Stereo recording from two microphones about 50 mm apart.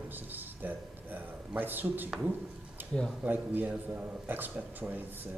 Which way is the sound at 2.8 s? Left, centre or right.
Right.